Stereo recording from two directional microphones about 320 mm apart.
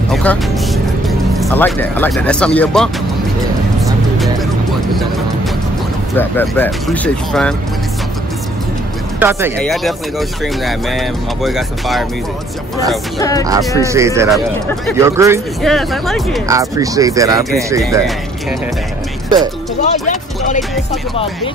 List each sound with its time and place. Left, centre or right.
0.1 s speech: centre
6.1 s speech: centre
9.2 s speech: centre
13.7 s speech: centre
16.4 s speech: centre
19.8 s speech: left